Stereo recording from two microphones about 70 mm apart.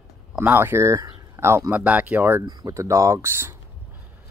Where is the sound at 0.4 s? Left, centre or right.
Right.